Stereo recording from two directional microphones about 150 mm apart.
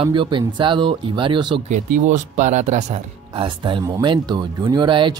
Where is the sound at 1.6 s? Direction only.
55° right (ahead or behind).